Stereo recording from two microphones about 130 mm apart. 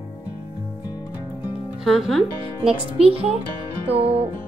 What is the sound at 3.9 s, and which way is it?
Music, 45° right (ahead or behind).